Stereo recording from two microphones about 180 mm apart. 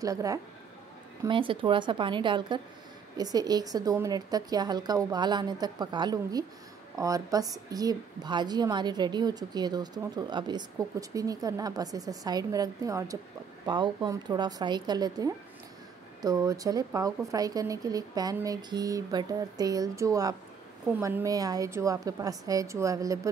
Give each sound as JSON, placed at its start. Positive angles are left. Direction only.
{"t": 0.0, "sound": "a woman's voice", "side_deg": -20}